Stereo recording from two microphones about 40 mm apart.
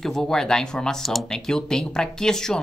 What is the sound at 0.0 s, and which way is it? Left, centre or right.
Speech, centre.